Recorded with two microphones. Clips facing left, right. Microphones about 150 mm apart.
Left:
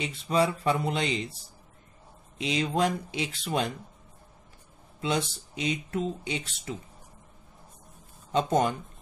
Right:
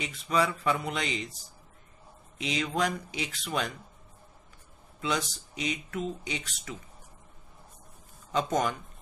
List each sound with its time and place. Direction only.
0.0 s speech: 30° left (ahead or behind)
5.5 s speech: 30° left (ahead or behind)
8.3 s speech: 30° left (ahead or behind)